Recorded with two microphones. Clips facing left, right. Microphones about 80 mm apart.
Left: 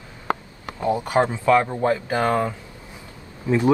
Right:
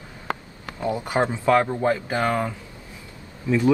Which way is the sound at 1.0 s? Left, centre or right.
Right.